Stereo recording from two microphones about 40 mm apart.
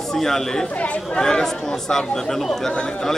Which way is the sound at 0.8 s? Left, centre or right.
Left.